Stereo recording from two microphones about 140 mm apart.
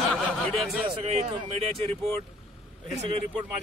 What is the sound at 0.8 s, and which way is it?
Speech, 50° right (ahead or behind).